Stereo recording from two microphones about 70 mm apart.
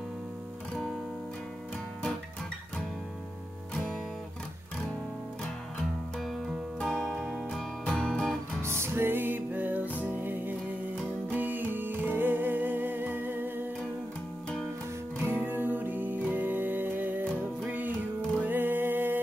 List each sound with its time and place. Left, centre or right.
3.7 s music: centre
5.8 s music: centre
8.6 s music: right
15.2 s music: right